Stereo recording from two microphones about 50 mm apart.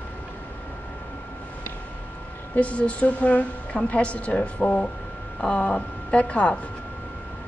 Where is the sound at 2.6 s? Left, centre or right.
Left.